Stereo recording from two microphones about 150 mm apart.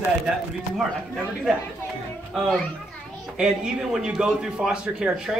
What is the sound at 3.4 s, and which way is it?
A man's voice, 5° right (ahead or behind).